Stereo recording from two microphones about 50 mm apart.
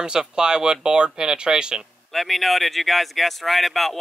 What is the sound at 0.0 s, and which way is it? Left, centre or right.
Speech, centre.